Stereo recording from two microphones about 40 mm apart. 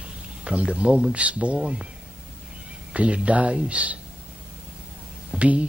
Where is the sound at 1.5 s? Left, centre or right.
Right.